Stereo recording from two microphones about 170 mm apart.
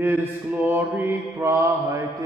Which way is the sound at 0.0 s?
10° right (ahead or behind).